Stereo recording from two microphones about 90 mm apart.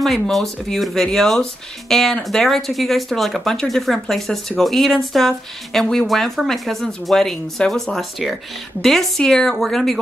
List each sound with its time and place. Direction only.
0.0 s speech: centre (ahead or behind)